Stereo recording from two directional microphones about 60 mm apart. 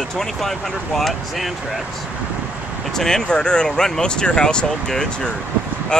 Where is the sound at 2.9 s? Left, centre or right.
Centre.